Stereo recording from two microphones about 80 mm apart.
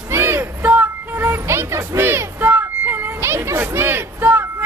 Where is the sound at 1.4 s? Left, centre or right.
Right.